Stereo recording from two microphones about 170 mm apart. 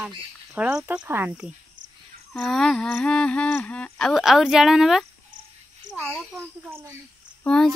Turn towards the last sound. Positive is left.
turn(degrees=5)  # may be behind; listen again after turning